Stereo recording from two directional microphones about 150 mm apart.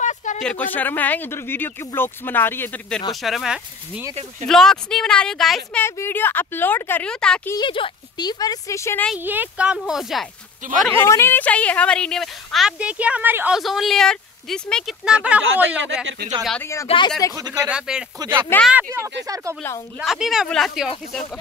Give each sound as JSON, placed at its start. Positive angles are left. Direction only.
{"t": 0.0, "sound": "a sound", "side_deg": 55}
{"t": 0.4, "sound": "speech", "side_deg": 10}
{"t": 3.2, "sound": "a woman's voice", "side_deg": 0}
{"t": 4.1, "sound": "speech", "side_deg": -45}
{"t": 4.5, "sound": "a woman's voice", "side_deg": 5}
{"t": 5.8, "sound": "speech", "side_deg": 15}
{"t": 7.6, "sound": "a woman's voice", "side_deg": 35}
{"t": 9.1, "sound": "a woman's voice", "side_deg": -10}
{"t": 10.9, "sound": "a woman's voice", "side_deg": 20}
{"t": 13.6, "sound": "a woman's voice", "side_deg": 0}
{"t": 16.8, "sound": "speech", "side_deg": 35}
{"t": 17.6, "sound": "a woman's voice", "side_deg": -5}
{"t": 19.2, "sound": "speech", "side_deg": -20}
{"t": 20.0, "sound": "a woman's voice", "side_deg": 0}